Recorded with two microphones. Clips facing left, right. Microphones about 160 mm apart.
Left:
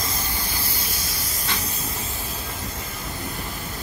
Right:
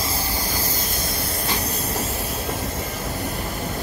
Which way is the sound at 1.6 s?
70° right (ahead or behind).